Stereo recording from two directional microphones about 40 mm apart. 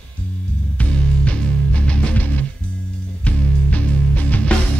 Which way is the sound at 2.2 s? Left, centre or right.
Left.